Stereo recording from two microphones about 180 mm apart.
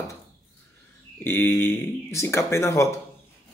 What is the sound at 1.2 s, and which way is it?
Speech, 15° left (ahead or behind).